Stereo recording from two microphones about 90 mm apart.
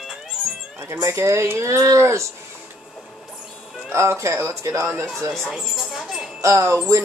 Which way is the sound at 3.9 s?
30° right (ahead or behind).